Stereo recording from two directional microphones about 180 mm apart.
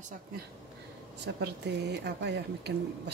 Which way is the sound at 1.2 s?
70° right (ahead or behind).